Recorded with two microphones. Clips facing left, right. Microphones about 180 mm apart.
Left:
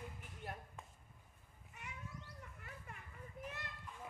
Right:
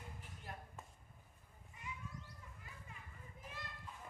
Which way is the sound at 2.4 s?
65° left (ahead or behind).